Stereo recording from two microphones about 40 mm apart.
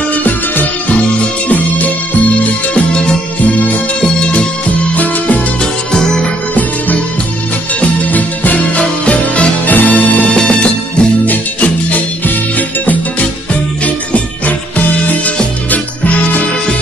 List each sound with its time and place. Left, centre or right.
0.1 s music: left
2.4 s music: left
4.2 s music: left
4.9 s music: left
5.6 s music: centre
8.1 s music: left
9.7 s music: left
10.3 s music: left
11.2 s music: left
16.0 s music: left